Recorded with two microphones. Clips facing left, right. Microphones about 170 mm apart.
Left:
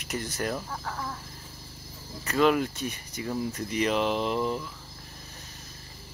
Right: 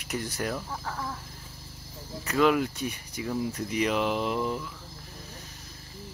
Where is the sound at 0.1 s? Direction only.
5° right (ahead or behind).